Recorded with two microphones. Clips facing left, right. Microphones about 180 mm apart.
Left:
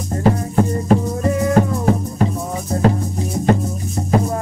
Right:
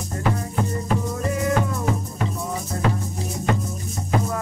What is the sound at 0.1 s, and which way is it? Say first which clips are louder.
Music: left 8 dB; 35° left (ahead or behind).